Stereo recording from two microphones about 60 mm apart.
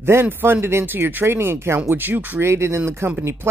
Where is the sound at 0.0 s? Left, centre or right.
Right.